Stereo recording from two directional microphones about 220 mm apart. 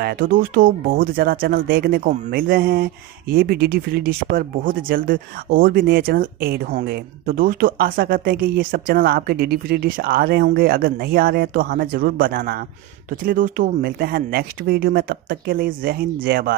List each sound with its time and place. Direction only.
0.0 s speech: 40° right (ahead or behind)